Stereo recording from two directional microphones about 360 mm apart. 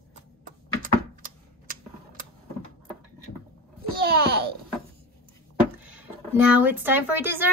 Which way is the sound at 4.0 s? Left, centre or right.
Right.